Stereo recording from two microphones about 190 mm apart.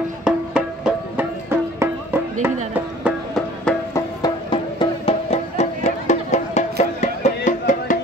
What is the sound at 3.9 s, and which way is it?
Music, 20° left (ahead or behind).